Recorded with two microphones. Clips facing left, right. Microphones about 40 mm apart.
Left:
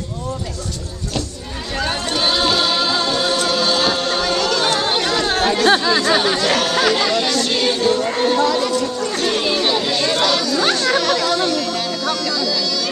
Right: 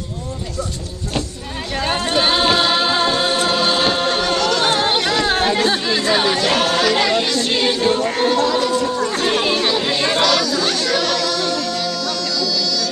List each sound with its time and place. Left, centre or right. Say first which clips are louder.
1.8 s music: right 2 dB; centre
4.6 s chatter: right 1 dB; centre
7.8 s music: left 1 dB; right
8.1 s a sound: even; centre
8.6 s chatter: right 2 dB; centre
9.6 s chatter: even; centre
9.8 s chatter: right 1 dB; centre
10.9 s music: left 2 dB; centre